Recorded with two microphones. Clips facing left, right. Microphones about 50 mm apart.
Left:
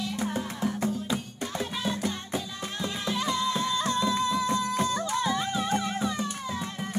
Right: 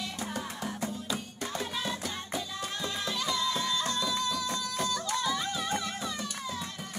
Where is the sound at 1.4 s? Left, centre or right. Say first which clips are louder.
Left 3 dB; centre.